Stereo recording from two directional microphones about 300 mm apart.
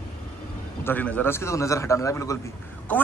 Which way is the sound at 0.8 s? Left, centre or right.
Centre.